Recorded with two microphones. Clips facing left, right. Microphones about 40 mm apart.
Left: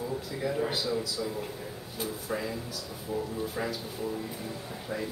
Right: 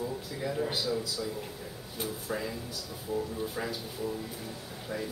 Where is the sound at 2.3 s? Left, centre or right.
Centre.